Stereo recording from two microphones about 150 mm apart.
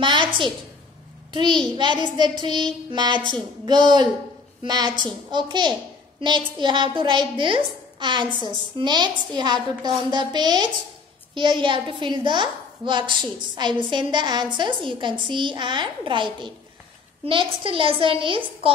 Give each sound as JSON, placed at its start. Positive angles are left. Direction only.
{"t": 0.0, "sound": "a woman's voice", "side_deg": -30}